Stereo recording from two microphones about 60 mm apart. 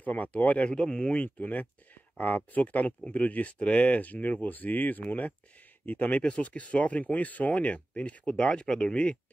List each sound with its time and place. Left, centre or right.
0.0 s speech: left